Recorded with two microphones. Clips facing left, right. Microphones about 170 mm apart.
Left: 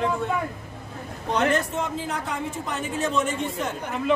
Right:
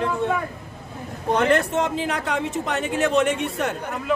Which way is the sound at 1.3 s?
60° right (ahead or behind).